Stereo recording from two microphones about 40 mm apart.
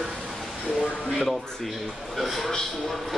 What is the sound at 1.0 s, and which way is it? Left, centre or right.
A man's voice, centre.